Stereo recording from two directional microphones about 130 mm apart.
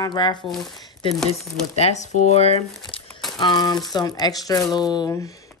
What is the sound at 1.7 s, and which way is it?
Speech, 60° left (ahead or behind).